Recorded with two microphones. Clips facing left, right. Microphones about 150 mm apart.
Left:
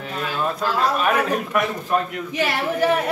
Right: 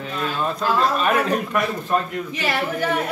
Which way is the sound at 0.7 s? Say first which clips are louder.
Even; 5° left (ahead or behind).